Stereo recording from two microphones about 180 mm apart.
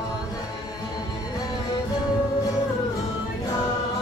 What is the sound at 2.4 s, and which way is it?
Music, 20° left (ahead or behind).